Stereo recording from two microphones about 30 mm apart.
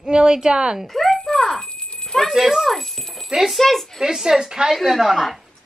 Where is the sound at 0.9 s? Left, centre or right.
Centre.